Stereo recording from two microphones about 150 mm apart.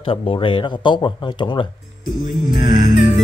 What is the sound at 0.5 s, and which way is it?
Music, 30° left (ahead or behind).